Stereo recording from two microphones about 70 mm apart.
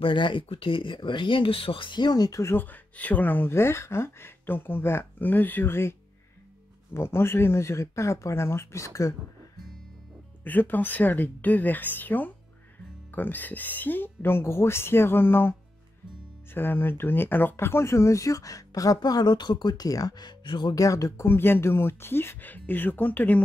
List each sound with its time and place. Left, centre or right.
2.0 s speech: left
2.5 s speech: left
10.4 s speech: left
16.5 s speech: left
20.8 s speech: left
21.3 s speech: left